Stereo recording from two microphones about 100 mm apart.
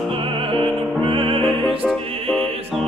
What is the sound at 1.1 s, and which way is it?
Music, 65° right (ahead or behind).